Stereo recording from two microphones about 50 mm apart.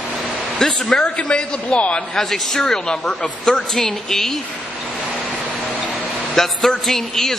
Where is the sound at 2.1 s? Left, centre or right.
Centre.